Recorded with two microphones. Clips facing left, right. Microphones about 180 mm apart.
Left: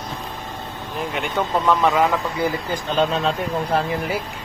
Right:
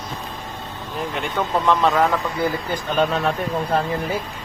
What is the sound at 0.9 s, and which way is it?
Speech, centre (ahead or behind).